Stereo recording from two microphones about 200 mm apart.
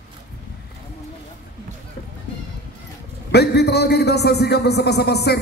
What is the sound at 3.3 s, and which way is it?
A man's voice, 55° left (ahead or behind).